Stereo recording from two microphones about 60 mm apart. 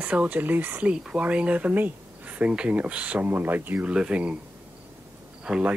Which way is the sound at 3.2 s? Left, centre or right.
Right.